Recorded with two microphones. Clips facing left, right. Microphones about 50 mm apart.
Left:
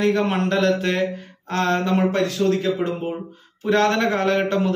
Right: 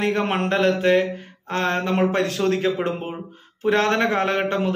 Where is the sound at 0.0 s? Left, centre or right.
Right.